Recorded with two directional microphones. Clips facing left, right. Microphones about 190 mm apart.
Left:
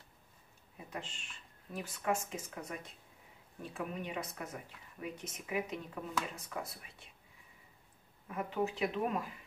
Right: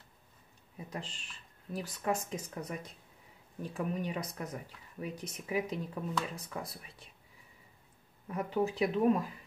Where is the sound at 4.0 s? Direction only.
35° right (ahead or behind).